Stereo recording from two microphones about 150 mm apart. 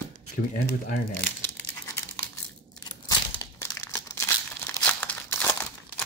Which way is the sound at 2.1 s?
25° left (ahead or behind).